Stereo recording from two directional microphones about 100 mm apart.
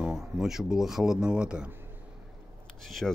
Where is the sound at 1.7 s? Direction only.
20° right (ahead or behind).